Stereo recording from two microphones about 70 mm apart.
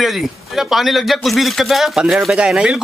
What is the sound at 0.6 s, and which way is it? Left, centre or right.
Speech, centre.